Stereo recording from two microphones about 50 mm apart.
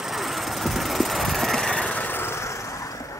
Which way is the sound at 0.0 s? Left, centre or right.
Centre.